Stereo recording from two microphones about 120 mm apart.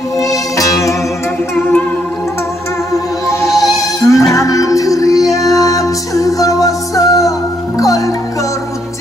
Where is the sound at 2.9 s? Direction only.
25° left (ahead or behind).